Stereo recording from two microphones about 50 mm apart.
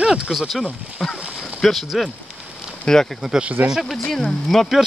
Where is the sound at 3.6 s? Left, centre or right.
Right.